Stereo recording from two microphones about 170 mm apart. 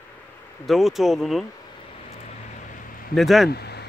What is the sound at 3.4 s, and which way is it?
Speech, 70° left (ahead or behind).